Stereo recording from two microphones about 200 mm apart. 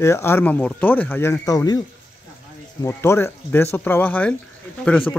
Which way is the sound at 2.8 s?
15° left (ahead or behind).